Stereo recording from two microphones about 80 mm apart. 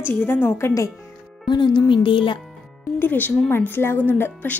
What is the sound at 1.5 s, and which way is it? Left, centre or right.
Speech, left.